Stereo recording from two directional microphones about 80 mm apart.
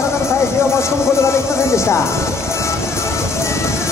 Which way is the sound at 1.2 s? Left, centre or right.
Left.